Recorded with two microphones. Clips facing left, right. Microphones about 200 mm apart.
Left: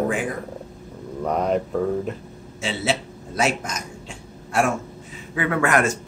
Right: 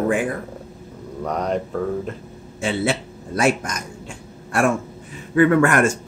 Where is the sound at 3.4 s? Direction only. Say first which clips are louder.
Right 3 dB; 55° right (ahead or behind).